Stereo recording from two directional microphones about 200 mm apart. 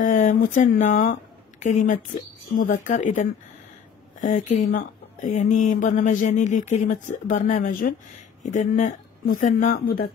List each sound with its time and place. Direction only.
0.0 s speech: 40° left (ahead or behind)